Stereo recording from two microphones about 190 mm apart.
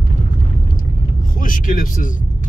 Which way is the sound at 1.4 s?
45° left (ahead or behind).